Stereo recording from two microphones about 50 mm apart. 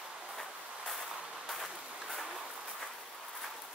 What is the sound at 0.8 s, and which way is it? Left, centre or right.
Vehicle, centre.